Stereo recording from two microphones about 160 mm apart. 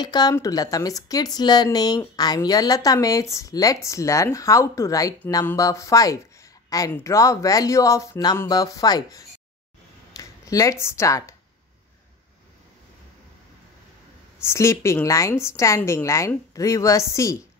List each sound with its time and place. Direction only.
0.0 s speech: 25° left (ahead or behind)
14.4 s speech: 15° left (ahead or behind)